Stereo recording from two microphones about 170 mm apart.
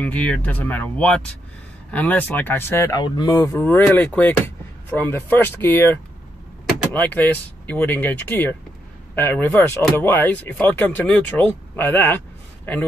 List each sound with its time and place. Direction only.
0.0 s speech: 5° left (ahead or behind)